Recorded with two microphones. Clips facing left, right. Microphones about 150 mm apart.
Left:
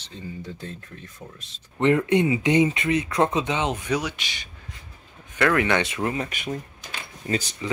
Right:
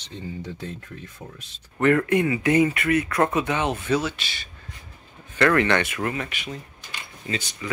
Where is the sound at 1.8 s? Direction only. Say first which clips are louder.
Even; 20° left (ahead or behind).